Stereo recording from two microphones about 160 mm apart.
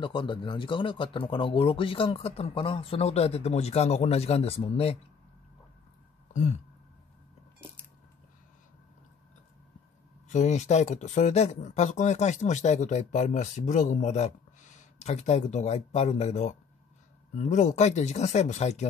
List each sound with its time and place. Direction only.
0.0 s speech: 30° left (ahead or behind)
10.2 s speech: 50° left (ahead or behind)